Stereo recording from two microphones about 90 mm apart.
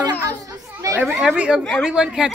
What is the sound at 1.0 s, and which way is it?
A child's voice, 10° right (ahead or behind).